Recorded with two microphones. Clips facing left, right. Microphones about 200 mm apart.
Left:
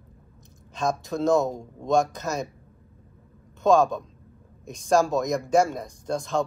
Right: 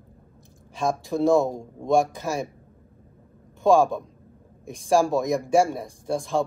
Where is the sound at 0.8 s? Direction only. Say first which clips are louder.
Right 2 dB; 15° right (ahead or behind).